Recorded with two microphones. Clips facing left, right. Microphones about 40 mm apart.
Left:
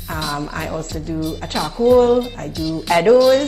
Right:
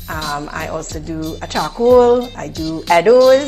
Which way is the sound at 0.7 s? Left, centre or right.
Right.